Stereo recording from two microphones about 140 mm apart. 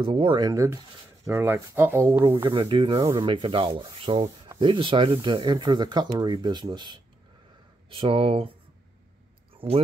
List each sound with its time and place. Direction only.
0.0 s speech: 35° right (ahead or behind)
0.5 s speech: 25° right (ahead or behind)
2.3 s speech: 35° right (ahead or behind)